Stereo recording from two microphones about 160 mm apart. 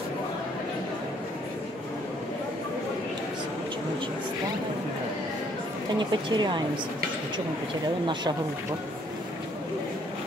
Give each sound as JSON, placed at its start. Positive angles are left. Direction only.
{"t": 6.3, "sound": "speech", "side_deg": -30}